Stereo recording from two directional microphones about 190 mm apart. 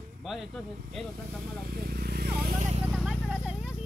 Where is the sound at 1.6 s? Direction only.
55° right (ahead or behind).